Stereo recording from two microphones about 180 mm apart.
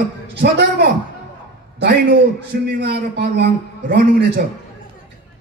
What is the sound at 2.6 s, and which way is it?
Speech, 65° right (ahead or behind).